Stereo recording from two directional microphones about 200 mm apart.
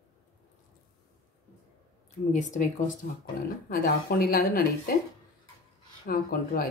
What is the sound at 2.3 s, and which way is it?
Speech, 35° left (ahead or behind).